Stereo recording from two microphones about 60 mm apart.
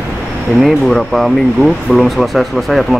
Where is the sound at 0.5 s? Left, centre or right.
Centre.